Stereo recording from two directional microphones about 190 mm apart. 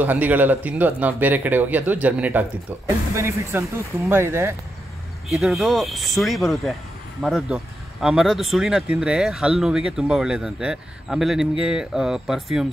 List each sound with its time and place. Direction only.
0.0 s speech: 10° right (ahead or behind)
5.3 s speech: centre (ahead or behind)